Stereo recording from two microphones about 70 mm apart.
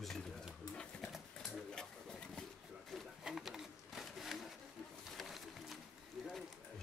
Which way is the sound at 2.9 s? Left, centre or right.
Centre.